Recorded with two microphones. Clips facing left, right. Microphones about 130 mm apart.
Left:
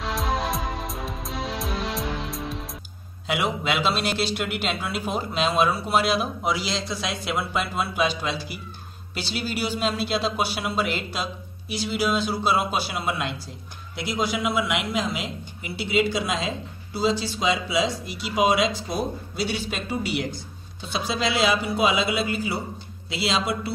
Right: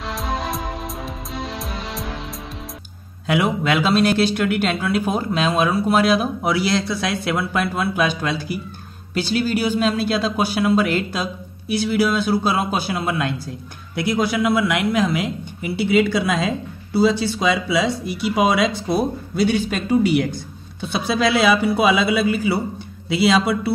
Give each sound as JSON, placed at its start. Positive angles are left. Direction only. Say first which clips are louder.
{"t": 0.0, "sound": "music", "louder": "right 1 dB", "side_deg": 0}
{"t": 3.3, "sound": "speech", "louder": "right 6 dB", "side_deg": -50}